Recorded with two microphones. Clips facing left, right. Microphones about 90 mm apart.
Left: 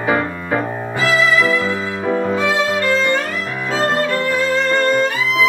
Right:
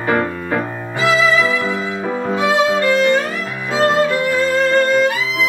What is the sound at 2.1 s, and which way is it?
Violin, 15° right (ahead or behind).